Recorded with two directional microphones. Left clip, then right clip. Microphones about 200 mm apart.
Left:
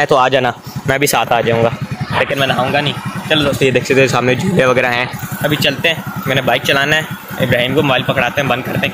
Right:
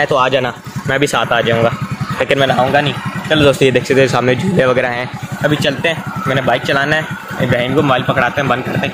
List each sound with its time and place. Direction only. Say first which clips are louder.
0.0 s speech: left 2 dB; 30° left (ahead or behind)
0.9 s speech: even; 15° left (ahead or behind)
2.3 s speech: right 6 dB; 20° right (ahead or behind)
3.7 s speech: even; centre (ahead or behind)
5.4 s speech: even; 15° right (ahead or behind)